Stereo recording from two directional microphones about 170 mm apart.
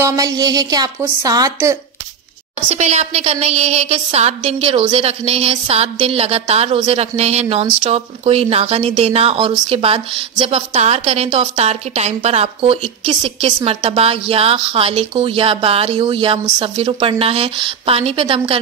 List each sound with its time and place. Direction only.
0.0 s a woman's voice: 20° right (ahead or behind)
2.7 s a woman's voice: 40° right (ahead or behind)